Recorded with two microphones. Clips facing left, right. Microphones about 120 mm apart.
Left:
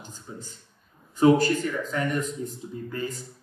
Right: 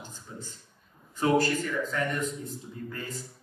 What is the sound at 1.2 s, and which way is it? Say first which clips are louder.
A man's voice: left 6 dB; centre (ahead or behind).